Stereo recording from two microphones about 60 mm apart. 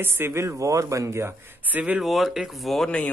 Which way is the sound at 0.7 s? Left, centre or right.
Right.